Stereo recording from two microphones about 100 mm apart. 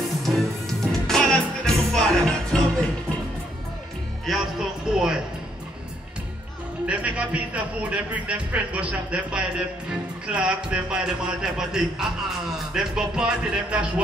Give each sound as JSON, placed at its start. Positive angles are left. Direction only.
{"t": 0.2, "sound": "music", "side_deg": 0}
{"t": 4.3, "sound": "music", "side_deg": -5}
{"t": 6.9, "sound": "a man's voice", "side_deg": -15}